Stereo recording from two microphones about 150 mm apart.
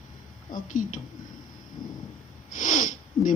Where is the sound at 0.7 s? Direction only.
60° left (ahead or behind).